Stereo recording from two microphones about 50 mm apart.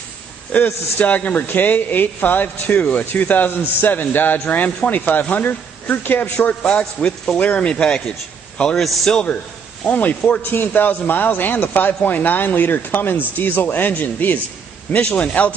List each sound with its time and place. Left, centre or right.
0.6 s speech: left
6.8 s speech: left
9.8 s speech: left
10.5 s speech: left